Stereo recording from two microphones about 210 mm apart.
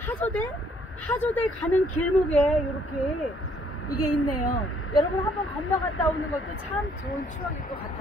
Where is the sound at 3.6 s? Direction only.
90° left.